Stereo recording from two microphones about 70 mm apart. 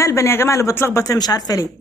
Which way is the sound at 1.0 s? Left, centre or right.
Left.